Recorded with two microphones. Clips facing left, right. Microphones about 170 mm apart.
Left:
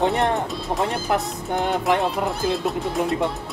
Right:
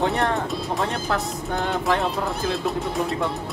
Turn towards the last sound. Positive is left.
turn(degrees=20)  # may be behind; listen again after turning